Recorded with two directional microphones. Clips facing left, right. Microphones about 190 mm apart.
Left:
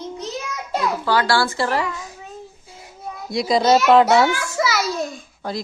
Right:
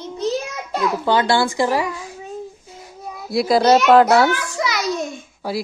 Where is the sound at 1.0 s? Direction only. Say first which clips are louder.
Right 3 dB; 20° right (ahead or behind).